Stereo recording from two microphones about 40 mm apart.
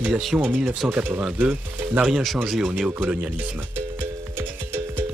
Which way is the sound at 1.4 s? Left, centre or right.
Right.